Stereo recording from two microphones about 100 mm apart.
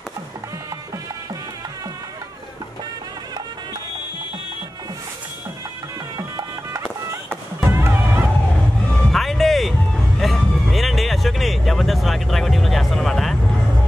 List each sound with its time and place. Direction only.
6.1 s music: 35° right (ahead or behind)
9.1 s music: centre (ahead or behind)